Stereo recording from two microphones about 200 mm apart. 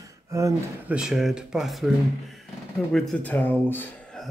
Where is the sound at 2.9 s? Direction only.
5° left (ahead or behind).